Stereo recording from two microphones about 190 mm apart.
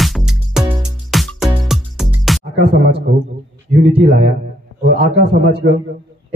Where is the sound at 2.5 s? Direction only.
60° right (ahead or behind).